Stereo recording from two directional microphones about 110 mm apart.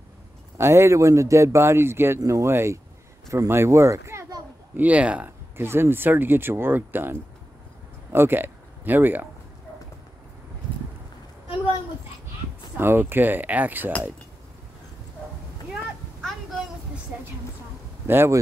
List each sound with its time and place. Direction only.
0.6 s speech: 25° right (ahead or behind)
3.3 s a sound: 25° right (ahead or behind)
4.8 s speech: 10° right (ahead or behind)
12.7 s speech: 20° right (ahead or behind)
18.0 s speech: 20° right (ahead or behind)